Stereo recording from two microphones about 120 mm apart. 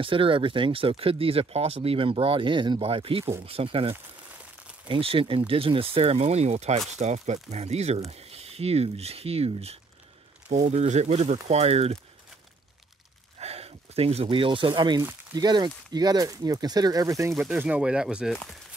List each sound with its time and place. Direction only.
0.0 s speech: 45° right (ahead or behind)
10.5 s speech: 70° right (ahead or behind)
13.4 s speech: 60° right (ahead or behind); by 17.3 s 30° right (ahead or behind)
17.3 s speech: 5° right (ahead or behind)